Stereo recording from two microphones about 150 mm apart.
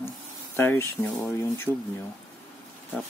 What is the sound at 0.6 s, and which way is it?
Speech, 15° left (ahead or behind).